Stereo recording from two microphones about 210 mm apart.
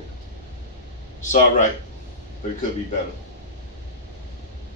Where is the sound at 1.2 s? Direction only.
35° left (ahead or behind).